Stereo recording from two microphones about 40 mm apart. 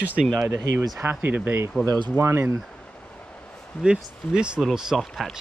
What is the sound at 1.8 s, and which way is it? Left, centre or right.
Speech, left.